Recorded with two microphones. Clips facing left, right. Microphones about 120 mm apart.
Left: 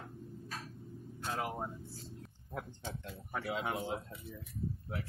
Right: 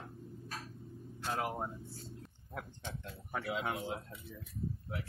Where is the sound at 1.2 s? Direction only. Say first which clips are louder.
Right 1 dB; centre (ahead or behind).